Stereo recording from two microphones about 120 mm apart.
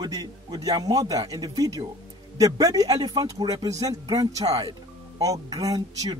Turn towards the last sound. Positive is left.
turn(degrees=-30)  # may be behind; listen again after turning